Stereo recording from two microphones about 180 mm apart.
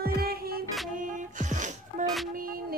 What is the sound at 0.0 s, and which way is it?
Music, 60° right (ahead or behind).